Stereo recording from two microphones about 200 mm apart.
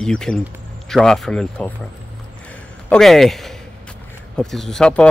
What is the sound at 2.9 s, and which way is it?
Speech, centre (ahead or behind).